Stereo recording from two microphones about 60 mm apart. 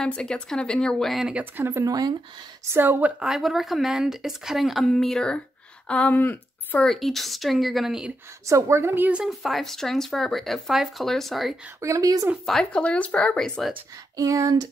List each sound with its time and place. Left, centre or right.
0.0 s speech: centre
1.7 s a woman's voice: right
2.8 s a woman's voice: right
3.2 s a woman's voice: centre
5.9 s speech: centre
6.1 s speech: left
6.8 s a woman's voice: centre
8.5 s a woman's voice: right
9.2 s a woman's voice: centre
11.8 s a woman's voice: right
12.7 s speech: left
13.4 s a woman's voice: centre
14.1 s a sound: right